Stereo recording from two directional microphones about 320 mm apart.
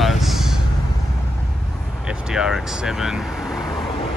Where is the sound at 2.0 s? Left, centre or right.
Centre.